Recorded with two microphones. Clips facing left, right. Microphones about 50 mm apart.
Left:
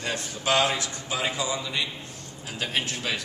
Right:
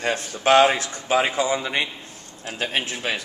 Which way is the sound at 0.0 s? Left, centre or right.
Right.